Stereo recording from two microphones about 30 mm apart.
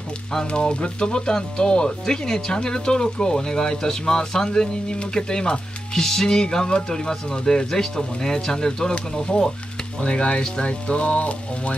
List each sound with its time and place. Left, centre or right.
0.5 s speech: left
10.0 s music: left